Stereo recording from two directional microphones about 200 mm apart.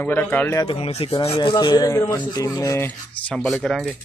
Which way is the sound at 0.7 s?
30° left (ahead or behind).